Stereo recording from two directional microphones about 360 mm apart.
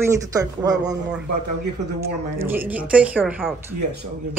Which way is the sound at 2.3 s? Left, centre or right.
Centre.